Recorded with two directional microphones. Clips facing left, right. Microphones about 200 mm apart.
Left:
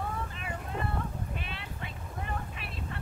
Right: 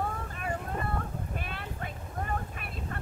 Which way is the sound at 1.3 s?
50° right (ahead or behind).